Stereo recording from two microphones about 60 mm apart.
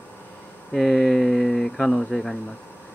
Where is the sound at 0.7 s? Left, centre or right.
Centre.